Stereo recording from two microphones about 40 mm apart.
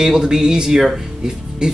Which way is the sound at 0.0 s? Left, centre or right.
Centre.